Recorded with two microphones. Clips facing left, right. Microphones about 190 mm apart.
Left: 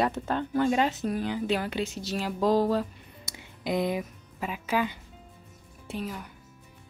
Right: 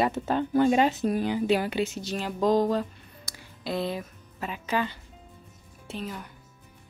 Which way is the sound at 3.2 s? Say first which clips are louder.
Left 2 dB; 20° left (ahead or behind).